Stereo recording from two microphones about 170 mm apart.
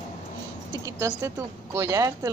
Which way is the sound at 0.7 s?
20° right (ahead or behind).